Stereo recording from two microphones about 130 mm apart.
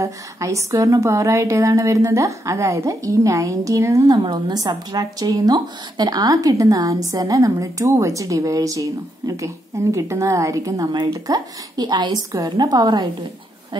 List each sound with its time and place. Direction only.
0.0 s a woman's voice: 25° right (ahead or behind)